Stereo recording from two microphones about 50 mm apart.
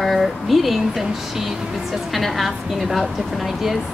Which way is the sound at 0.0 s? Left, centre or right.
Centre.